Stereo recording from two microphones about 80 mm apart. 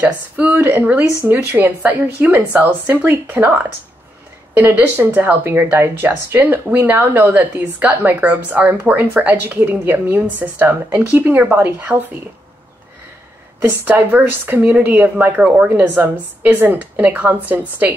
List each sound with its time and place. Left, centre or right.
0.0 s a woman's voice: right
13.6 s a woman's voice: right